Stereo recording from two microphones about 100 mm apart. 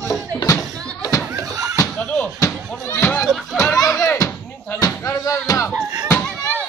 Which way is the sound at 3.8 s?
35° left (ahead or behind).